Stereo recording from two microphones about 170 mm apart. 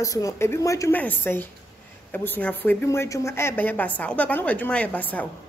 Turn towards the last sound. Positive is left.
turn(degrees=10)  # may be behind; listen again after turning